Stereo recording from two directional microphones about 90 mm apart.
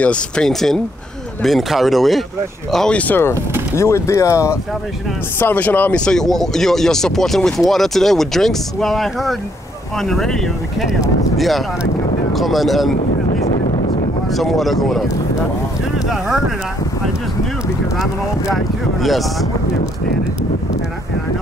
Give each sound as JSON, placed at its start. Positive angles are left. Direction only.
{"t": 0.0, "sound": "speech", "side_deg": 10}
{"t": 3.0, "sound": "speech", "side_deg": 20}
{"t": 5.4, "sound": "speech", "side_deg": 20}
{"t": 11.3, "sound": "speech", "side_deg": 0}
{"t": 14.3, "sound": "speech", "side_deg": 0}
{"t": 16.1, "sound": "speech", "side_deg": -5}